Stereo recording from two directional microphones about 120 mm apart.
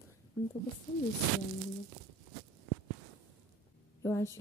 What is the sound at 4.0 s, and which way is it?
Speech, 25° left (ahead or behind).